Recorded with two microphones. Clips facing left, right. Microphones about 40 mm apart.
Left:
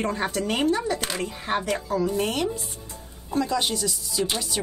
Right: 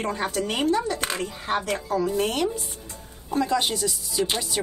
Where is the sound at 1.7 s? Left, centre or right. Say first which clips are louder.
Even; centre.